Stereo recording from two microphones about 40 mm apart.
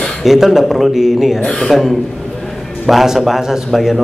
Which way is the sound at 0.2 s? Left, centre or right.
Centre.